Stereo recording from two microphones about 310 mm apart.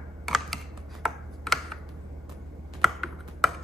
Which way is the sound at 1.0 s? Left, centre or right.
Centre.